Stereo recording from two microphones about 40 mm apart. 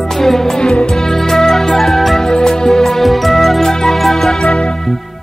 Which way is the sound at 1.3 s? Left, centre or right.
Centre.